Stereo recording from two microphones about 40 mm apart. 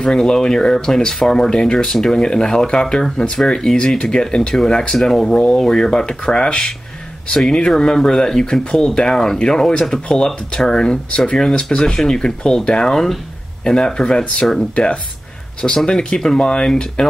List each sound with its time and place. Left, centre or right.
0.1 s speech: centre
4.4 s speech: centre
4.9 s speech: centre